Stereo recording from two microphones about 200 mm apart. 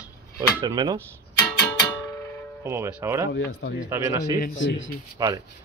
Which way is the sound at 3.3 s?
65° left (ahead or behind).